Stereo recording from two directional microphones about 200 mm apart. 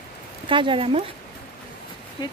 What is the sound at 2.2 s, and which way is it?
Speech, 25° left (ahead or behind).